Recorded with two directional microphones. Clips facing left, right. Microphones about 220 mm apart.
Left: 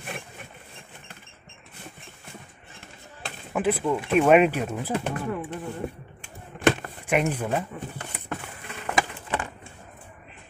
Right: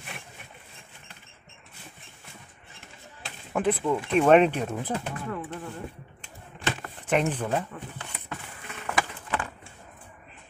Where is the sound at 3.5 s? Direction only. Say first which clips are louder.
Left 1 dB; 5° left (ahead or behind).